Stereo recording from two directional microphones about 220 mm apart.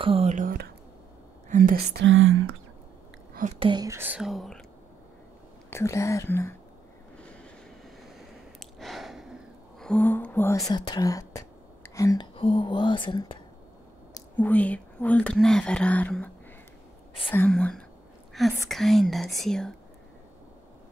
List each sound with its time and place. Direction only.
0.0 s speech: 25° right (ahead or behind)
2.0 s speech: 65° right (ahead or behind)
3.6 s speech: 15° right (ahead or behind); by 4.6 s centre (ahead or behind)
5.7 s speech: 10° left (ahead or behind)
8.5 s a sound: centre (ahead or behind); by 13.4 s 20° left (ahead or behind)
14.1 s speech: 10° left (ahead or behind)
17.3 s speech: 5° left (ahead or behind)